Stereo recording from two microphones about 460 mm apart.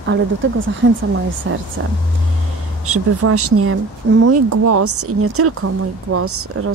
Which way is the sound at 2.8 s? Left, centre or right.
Right.